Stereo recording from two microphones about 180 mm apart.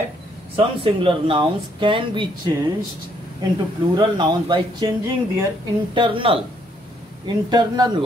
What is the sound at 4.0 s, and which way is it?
Speech, 25° right (ahead or behind).